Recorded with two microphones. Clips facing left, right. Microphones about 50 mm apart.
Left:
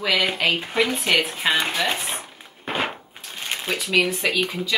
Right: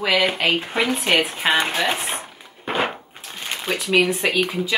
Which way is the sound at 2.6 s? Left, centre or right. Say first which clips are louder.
Right 3 dB; centre.